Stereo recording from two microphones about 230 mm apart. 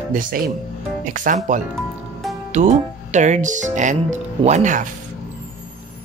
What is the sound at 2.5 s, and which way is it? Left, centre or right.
Speech, right.